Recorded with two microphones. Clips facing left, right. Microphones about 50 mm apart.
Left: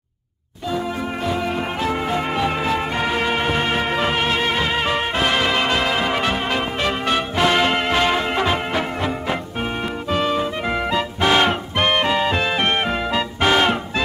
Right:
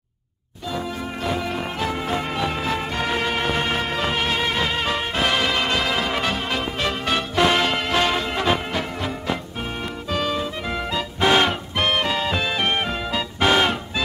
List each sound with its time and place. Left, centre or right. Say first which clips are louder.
1.9 s music: left 5 dB; centre
11.1 s music: even; centre
13.4 s music: left 1 dB; centre